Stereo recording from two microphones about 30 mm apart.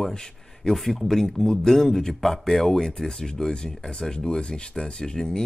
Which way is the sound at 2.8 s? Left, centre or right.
Left.